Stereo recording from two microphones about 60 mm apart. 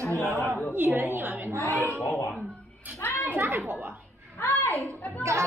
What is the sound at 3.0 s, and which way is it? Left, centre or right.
Speech, left.